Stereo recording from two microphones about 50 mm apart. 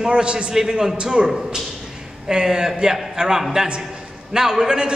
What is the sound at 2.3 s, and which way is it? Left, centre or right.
A man's voice, centre.